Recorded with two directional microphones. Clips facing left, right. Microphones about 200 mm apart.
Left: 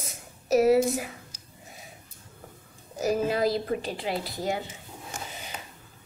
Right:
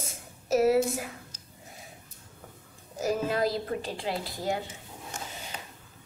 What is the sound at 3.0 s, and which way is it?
Speech, 5° left (ahead or behind).